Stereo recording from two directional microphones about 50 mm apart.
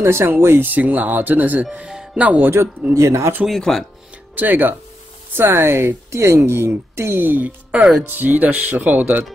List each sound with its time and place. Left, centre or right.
0.0 s a woman's voice: right
0.7 s speech: right
2.9 s speech: right
3.7 s speech: centre
4.4 s speech: right
5.3 s a woman's voice: right
7.4 s speech: right
8.0 s speech: right